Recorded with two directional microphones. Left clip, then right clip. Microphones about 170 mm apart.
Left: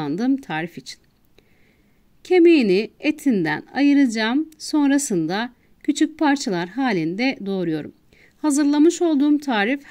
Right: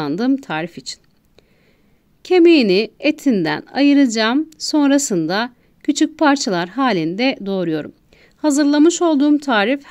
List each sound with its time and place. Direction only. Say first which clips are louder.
0.0 s a woman's voice: right 4 dB; 25° left (ahead or behind)
2.2 s a woman's voice: right 3 dB; 25° left (ahead or behind)